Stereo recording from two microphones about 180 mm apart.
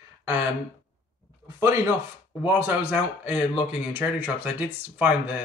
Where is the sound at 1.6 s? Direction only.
15° right (ahead or behind).